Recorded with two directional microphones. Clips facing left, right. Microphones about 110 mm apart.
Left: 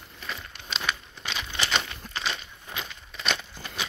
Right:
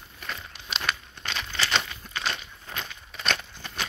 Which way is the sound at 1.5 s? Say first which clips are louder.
Right 1 dB; 15° left (ahead or behind).